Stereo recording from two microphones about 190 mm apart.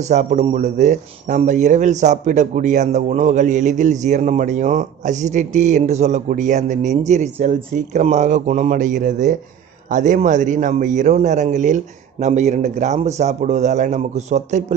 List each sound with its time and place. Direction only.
0.0 s speech: 40° right (ahead or behind)